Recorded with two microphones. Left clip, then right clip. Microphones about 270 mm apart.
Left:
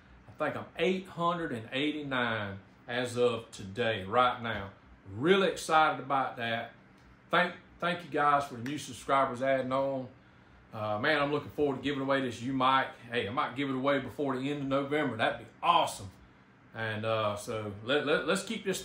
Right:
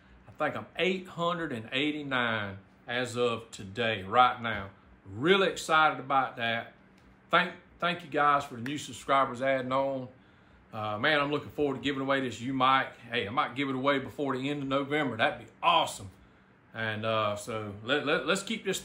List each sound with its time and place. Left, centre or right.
0.4 s speech: centre